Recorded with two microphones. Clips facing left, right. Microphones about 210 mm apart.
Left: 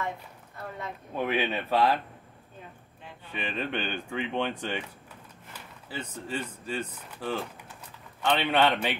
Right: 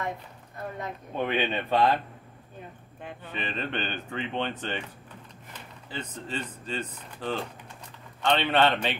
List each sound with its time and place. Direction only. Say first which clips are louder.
1.1 s speech: even; 5° left (ahead or behind)
3.0 s speech: right 7 dB; 55° right (ahead or behind)
3.3 s speech: left 1 dB; 10° left (ahead or behind)